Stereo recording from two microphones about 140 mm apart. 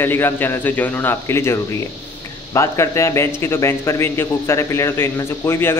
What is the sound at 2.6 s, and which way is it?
A man's voice, 20° left (ahead or behind).